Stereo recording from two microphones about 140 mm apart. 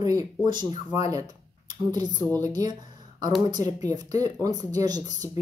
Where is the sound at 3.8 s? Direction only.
25° right (ahead or behind).